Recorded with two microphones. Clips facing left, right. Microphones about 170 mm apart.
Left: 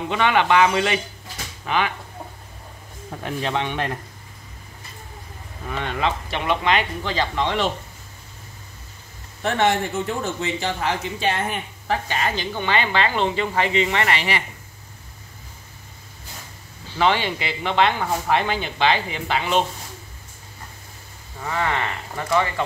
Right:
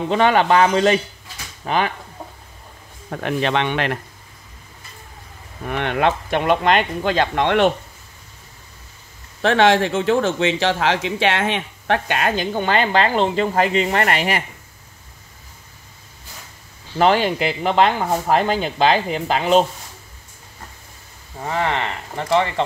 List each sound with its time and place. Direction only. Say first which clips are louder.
0.1 s speech: right 3 dB; 40° right (ahead or behind)
3.1 s speech: right 5 dB; 75° right (ahead or behind)
5.7 s speech: right 5 dB; 65° right (ahead or behind)
9.4 s speech: right 5 dB; 90° right; by 14.4 s 45° right (ahead or behind)
17.0 s speech: right 5 dB; 45° right (ahead or behind)
21.4 s speech: right 3 dB; 30° right (ahead or behind)